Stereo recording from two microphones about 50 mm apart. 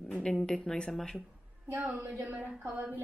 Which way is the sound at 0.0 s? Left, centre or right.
Centre.